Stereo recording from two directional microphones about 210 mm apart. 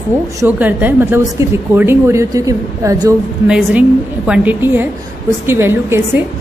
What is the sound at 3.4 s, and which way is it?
A woman's voice, 5° right (ahead or behind).